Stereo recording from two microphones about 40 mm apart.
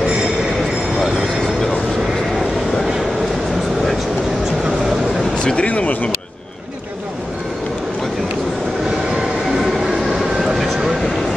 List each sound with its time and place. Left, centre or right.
1.0 s vehicle: centre
5.4 s a sound: left
5.7 s speech: left
9.8 s vehicle: centre